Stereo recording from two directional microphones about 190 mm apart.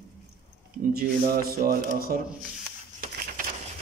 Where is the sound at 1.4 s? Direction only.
50° right (ahead or behind).